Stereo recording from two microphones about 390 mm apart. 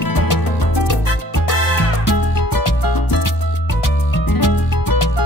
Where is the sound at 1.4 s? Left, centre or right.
Left.